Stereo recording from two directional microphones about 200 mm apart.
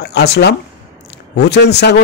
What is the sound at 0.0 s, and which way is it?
A man's voice, 55° left (ahead or behind).